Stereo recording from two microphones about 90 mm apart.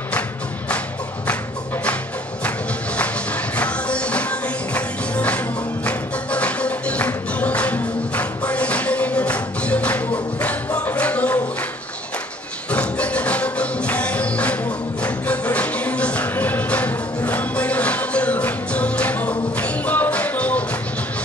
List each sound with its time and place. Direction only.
3.5 s music: 15° left (ahead or behind)
12.7 s music: 15° left (ahead or behind)